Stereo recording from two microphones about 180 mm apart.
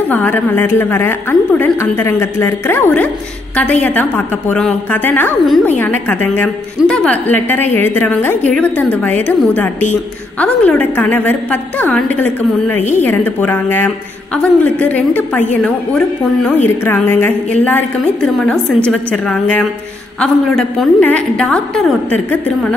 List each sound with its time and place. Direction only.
0.1 s a woman's voice: 10° left (ahead or behind)